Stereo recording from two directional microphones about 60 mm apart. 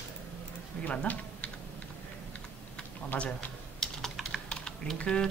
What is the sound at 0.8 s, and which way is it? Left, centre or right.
Speech, left.